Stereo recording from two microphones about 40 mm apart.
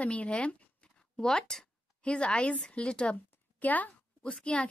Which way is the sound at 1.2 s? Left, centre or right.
Centre.